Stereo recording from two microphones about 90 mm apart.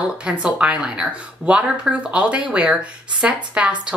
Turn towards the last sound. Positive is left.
turn(degrees=-10)  # may be behind; listen again after turning